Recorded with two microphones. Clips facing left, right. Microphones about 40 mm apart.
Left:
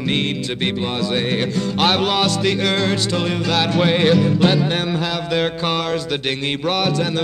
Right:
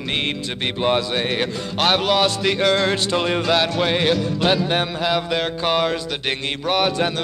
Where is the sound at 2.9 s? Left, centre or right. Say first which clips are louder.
Even; centre.